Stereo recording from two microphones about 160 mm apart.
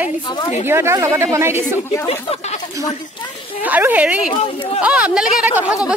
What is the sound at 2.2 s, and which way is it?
Speech, 40° left (ahead or behind).